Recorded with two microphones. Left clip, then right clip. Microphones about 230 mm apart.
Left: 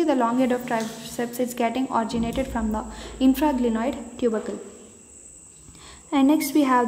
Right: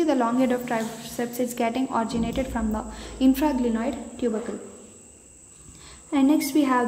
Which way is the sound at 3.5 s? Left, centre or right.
Centre.